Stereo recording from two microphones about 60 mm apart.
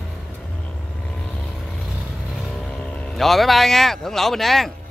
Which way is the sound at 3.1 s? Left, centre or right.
Centre.